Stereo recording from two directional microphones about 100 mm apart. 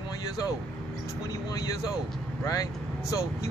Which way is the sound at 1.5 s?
35° left (ahead or behind).